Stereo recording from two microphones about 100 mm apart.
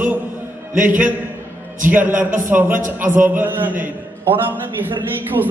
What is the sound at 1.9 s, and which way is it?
A man's voice, 20° right (ahead or behind).